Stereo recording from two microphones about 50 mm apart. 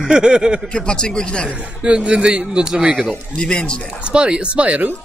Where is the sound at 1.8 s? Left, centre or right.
Centre.